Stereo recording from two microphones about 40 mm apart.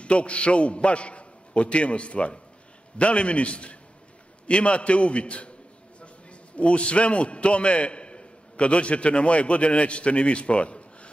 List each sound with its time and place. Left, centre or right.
0.0 s a man's voice: left
6.5 s a man's voice: left